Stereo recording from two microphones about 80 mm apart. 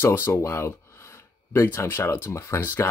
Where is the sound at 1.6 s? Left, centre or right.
Left.